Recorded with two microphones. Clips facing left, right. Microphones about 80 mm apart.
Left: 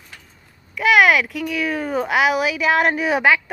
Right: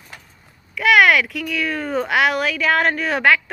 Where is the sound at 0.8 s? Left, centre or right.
Centre.